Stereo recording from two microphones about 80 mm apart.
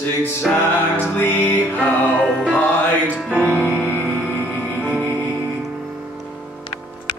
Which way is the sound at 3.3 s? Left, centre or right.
Centre.